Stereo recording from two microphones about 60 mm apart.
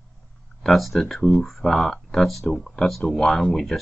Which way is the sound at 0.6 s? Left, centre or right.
Centre.